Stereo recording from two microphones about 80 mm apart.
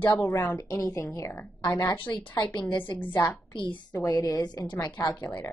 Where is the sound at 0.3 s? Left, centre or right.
Left.